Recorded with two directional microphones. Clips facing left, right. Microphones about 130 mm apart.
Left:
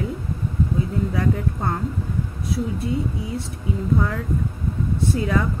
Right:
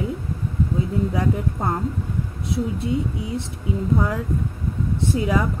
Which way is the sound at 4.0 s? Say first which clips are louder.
Right 1 dB; 10° right (ahead or behind).